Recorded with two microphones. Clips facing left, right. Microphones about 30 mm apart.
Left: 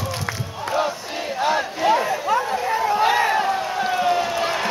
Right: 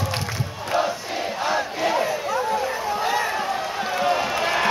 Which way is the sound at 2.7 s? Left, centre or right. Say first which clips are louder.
Left 5 dB; left.